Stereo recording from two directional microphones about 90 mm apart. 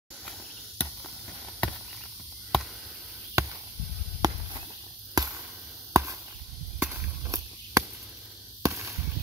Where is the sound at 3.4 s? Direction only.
35° right (ahead or behind).